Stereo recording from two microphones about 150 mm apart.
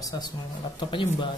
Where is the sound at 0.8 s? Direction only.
30° left (ahead or behind).